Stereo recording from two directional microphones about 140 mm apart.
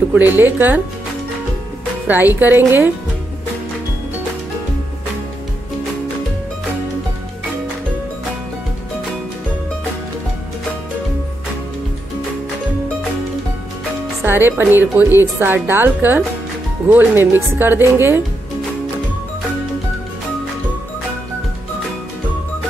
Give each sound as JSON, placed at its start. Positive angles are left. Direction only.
{"t": 0.1, "sound": "speech", "side_deg": -15}
{"t": 2.0, "sound": "speech", "side_deg": -15}
{"t": 14.2, "sound": "speech", "side_deg": -15}